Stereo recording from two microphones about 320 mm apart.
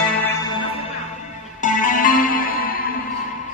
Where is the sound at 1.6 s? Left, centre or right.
Left.